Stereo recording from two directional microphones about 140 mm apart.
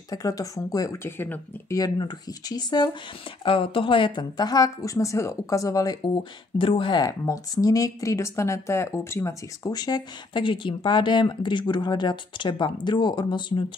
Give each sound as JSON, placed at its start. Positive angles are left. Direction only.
{"t": 0.1, "sound": "speech", "side_deg": 25}
{"t": 1.8, "sound": "speech", "side_deg": 30}